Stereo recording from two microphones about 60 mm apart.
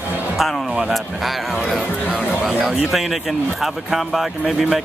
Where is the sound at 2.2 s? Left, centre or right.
Centre.